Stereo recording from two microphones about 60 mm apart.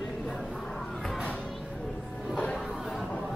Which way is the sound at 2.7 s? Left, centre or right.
Centre.